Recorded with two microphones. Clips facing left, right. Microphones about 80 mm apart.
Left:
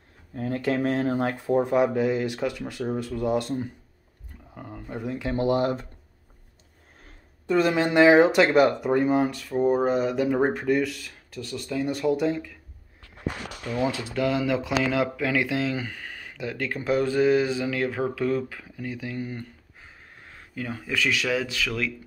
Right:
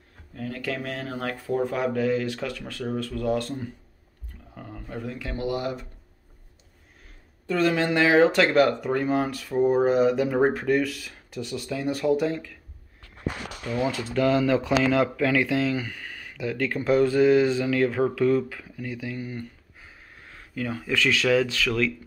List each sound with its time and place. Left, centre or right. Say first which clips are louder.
0.3 s speech: left 5 dB; left
7.4 s speech: left 1 dB; centre
9.3 s speech: right 1 dB; centre
11.2 s speech: right 2 dB; centre
13.7 s speech: even; centre